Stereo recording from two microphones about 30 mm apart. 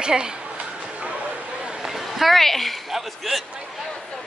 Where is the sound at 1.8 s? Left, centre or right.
Centre.